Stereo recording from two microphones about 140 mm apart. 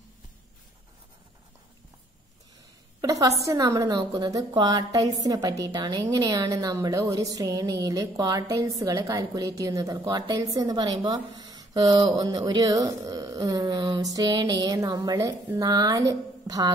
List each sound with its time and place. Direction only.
3.0 s a woman's voice: 25° right (ahead or behind)